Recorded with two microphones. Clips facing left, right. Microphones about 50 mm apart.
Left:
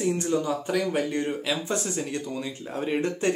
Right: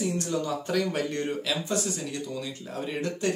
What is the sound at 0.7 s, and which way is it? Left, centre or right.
Speech, centre.